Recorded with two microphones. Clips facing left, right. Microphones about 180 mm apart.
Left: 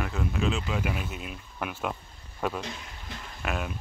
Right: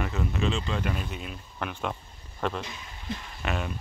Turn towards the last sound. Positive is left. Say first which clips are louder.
# right 1 dB
turn(degrees=0)  # may be behind; listen again after turning